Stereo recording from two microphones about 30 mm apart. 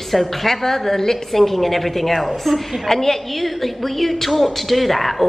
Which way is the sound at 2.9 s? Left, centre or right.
Centre.